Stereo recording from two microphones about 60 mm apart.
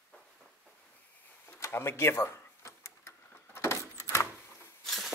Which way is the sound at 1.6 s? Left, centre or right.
Left.